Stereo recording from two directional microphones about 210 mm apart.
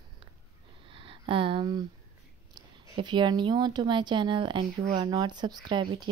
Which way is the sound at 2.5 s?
20° right (ahead or behind).